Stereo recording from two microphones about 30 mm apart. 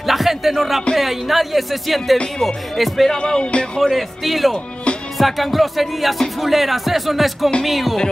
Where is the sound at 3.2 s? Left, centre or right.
Left.